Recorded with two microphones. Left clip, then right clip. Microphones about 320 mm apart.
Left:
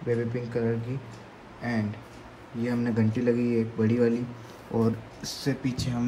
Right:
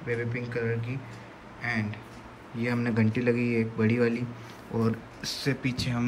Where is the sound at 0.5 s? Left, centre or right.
Centre.